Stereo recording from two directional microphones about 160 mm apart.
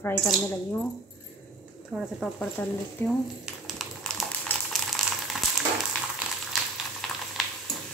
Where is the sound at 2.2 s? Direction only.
10° left (ahead or behind).